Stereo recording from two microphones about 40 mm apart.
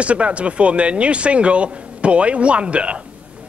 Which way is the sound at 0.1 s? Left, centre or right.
Right.